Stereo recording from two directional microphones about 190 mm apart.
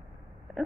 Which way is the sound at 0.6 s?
Centre (ahead or behind).